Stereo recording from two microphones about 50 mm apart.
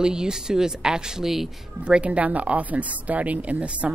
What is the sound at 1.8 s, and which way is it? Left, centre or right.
Speech, right.